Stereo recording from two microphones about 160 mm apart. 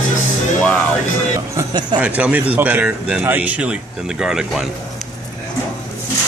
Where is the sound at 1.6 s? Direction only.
25° right (ahead or behind).